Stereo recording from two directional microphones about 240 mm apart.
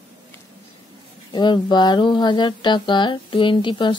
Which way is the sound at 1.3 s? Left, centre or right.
Centre.